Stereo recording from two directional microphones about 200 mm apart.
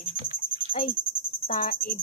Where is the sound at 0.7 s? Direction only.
45° left (ahead or behind).